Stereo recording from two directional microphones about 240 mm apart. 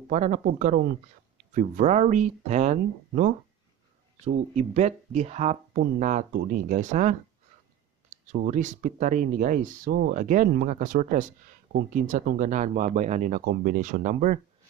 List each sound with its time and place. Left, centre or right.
0.1 s speech: right